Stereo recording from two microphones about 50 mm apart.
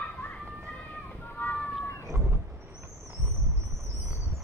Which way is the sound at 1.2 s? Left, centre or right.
Left.